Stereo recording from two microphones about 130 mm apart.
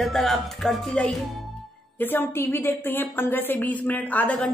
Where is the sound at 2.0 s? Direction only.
15° left (ahead or behind).